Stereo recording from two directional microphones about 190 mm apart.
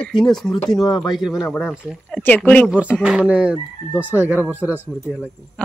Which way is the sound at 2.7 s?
5° right (ahead or behind).